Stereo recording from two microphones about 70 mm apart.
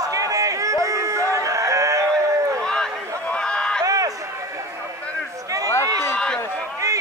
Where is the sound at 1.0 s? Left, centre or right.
Right.